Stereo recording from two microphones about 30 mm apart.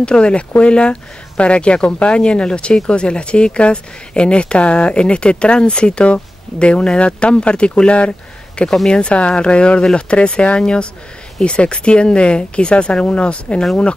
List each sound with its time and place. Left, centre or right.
0.0 s speech: left